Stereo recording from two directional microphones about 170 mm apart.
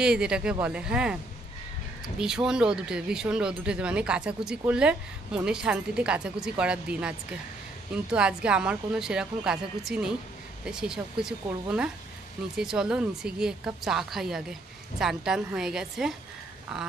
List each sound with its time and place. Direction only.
0.0 s speech: 5° right (ahead or behind)
2.1 s speech: 5° right (ahead or behind)
12.5 s speech: 5° right (ahead or behind)